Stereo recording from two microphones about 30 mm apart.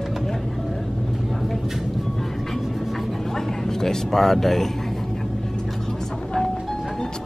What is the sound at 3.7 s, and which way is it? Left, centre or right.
Speech, centre.